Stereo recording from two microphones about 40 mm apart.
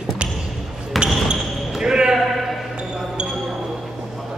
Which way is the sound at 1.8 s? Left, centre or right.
Centre.